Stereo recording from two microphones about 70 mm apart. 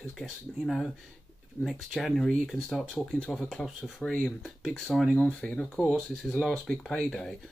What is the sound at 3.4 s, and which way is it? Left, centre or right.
Speech, centre.